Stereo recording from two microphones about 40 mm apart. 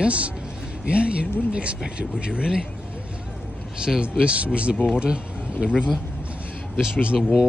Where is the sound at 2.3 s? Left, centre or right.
Centre.